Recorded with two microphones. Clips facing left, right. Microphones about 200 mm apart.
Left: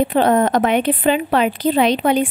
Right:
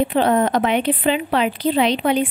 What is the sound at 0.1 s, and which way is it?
A woman's voice, 45° left (ahead or behind).